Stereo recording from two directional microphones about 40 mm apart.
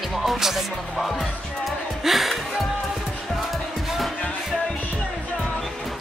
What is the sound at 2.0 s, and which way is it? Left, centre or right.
Music, centre.